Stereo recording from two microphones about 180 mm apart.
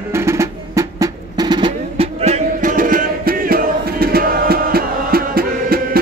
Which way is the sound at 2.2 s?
40° right (ahead or behind).